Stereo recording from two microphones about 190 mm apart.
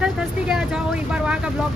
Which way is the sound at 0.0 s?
5° right (ahead or behind).